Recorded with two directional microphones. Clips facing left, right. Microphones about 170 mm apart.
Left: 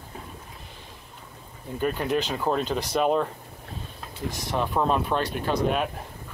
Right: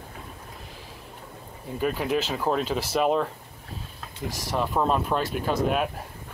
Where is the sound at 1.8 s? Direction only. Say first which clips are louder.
Even; 5° right (ahead or behind).